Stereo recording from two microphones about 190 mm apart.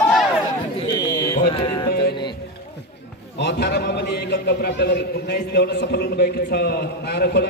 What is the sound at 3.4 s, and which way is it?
A man's voice, 60° left (ahead or behind).